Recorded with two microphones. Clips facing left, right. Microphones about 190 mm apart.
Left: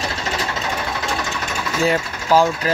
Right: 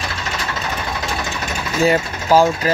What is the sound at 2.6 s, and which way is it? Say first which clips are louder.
Speech: right 2 dB; 5° right (ahead or behind).